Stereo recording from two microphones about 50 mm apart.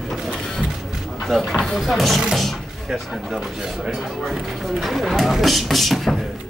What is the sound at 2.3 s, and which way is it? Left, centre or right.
Speech, centre.